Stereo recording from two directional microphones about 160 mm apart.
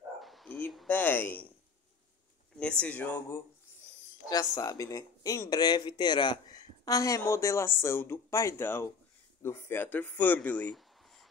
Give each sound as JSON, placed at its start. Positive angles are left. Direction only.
{"t": 0.2, "sound": "a sound", "side_deg": 0}
{"t": 2.8, "sound": "speech", "side_deg": 10}
{"t": 4.3, "sound": "speech", "side_deg": 25}